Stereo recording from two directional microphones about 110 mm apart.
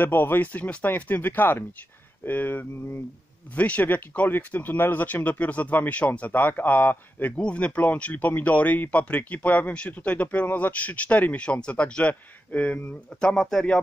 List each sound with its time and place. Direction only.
0.0 s speech: 20° left (ahead or behind)